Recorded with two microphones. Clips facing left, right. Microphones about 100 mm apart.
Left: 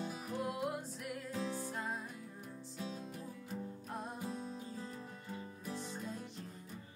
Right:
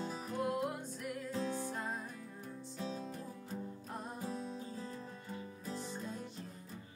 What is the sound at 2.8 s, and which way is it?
Music, 35° right (ahead or behind).